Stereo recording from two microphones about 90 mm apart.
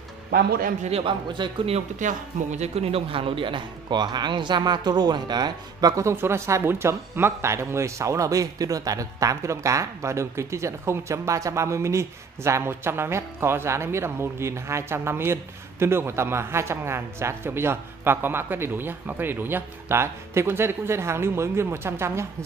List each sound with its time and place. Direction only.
0.9 s a man's voice: 65° right (ahead or behind)
2.8 s speech: 90° right; by 6.1 s 40° right (ahead or behind)
6.1 s a man's voice: 30° right (ahead or behind)